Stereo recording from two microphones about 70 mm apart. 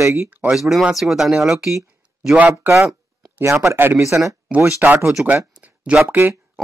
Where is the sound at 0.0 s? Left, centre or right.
Right.